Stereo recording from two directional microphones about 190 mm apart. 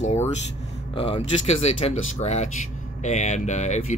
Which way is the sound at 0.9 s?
30° left (ahead or behind).